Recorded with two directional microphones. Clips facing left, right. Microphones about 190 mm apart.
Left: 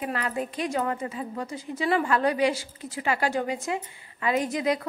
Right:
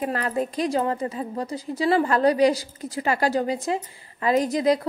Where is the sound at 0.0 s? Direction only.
40° right (ahead or behind).